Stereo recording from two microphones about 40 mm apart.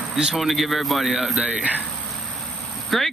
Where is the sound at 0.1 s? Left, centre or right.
Centre.